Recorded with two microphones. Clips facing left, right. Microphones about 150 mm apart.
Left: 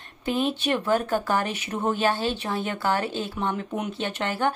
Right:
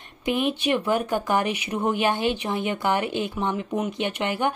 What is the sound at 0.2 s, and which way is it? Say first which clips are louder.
A woman's voice: right 1 dB; 15° right (ahead or behind).